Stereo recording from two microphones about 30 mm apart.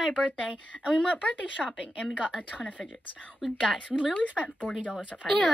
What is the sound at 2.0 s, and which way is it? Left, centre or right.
Speech, right.